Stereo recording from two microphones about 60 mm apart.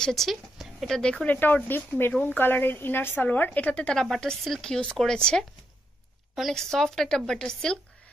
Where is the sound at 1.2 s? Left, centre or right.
Left.